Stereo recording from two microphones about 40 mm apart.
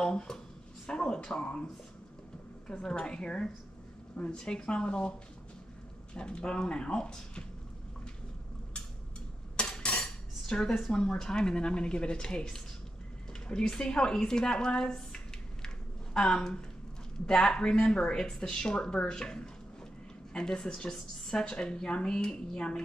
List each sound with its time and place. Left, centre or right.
0.0 s a sound: centre
0.8 s speech: left
2.7 s speech: left
6.1 s speech: left
9.8 s cutlery: left
10.4 s speech: centre
13.3 s a sound: centre
17.3 s speech: left